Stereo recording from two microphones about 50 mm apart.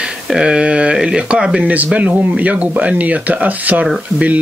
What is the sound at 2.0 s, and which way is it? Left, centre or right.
Speech, right.